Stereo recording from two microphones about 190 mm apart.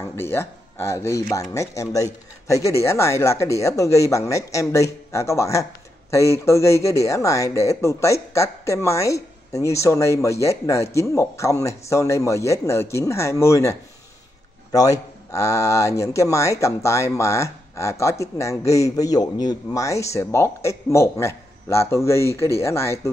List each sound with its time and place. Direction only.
0.1 s speech: 10° left (ahead or behind)